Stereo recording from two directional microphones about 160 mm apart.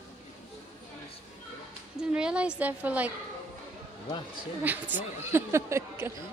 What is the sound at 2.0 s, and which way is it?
Speech, 5° right (ahead or behind).